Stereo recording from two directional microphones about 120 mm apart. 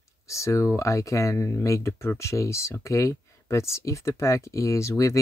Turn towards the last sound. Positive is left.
turn(degrees=25)  # may be behind; listen again after turning